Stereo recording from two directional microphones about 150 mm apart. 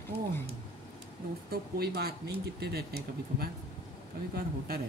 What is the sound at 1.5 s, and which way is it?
Speech, 90° right.